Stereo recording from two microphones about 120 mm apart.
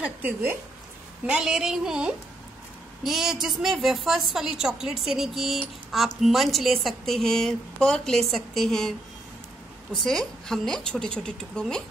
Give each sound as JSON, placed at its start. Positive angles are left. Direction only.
{"t": 0.0, "sound": "a woman's voice", "side_deg": -15}
{"t": 10.0, "sound": "a woman's voice", "side_deg": 5}